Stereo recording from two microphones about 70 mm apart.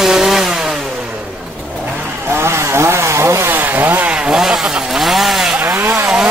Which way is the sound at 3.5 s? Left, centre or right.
Right.